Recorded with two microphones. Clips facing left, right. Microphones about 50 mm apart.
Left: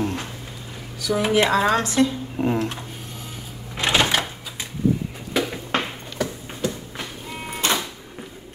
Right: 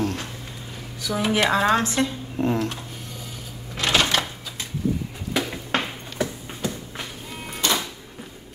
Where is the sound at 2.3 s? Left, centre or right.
Centre.